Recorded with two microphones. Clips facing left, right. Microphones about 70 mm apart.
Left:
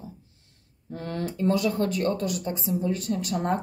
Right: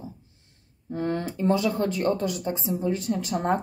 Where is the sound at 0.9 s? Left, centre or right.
Right.